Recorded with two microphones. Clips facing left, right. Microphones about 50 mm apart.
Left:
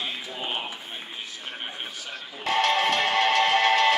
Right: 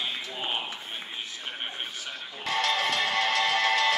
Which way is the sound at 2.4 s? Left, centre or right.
Left.